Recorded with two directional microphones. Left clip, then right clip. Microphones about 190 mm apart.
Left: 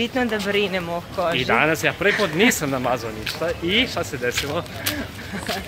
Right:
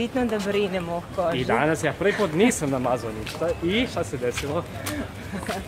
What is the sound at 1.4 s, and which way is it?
Speech, 20° right (ahead or behind).